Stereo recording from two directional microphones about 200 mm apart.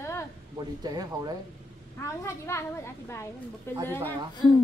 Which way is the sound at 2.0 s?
15° left (ahead or behind).